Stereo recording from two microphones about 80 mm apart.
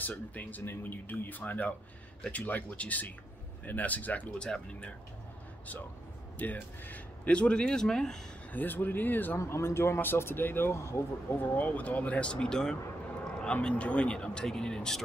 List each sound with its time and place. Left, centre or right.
0.0 s speech: centre
6.3 s speech: left
8.5 s speech: left
11.3 s speech: left